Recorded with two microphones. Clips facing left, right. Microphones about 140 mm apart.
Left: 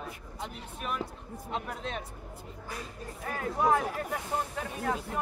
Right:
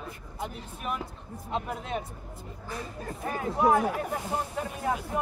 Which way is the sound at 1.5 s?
10° right (ahead or behind).